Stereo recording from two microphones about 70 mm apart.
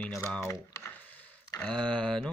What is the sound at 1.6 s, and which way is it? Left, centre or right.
Speech, centre.